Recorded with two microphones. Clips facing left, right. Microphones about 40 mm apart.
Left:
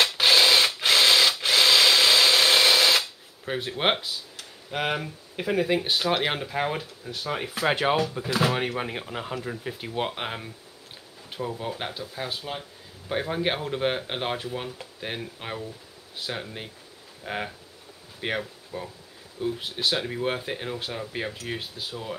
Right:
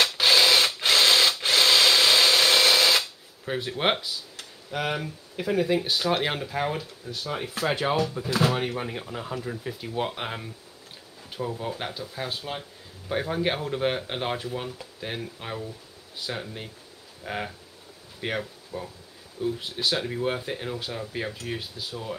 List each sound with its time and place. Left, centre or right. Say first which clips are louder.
0.3 s mechanisms: left 1 dB; centre
0.7 s ratchet: left 1 dB; centre
4.6 s speech: left 1 dB; left
8.1 s speech: even; centre
13.1 s speech: even; centre
18.7 s speech: even; left
19.4 s speech: even; centre